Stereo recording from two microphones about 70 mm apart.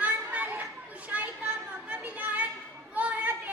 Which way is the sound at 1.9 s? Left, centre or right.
Right.